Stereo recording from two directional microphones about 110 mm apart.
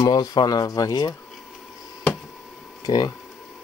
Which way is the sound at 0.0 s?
35° left (ahead or behind).